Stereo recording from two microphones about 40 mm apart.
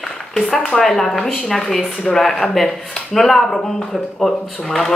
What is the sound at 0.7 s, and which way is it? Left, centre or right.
A woman's voice, centre.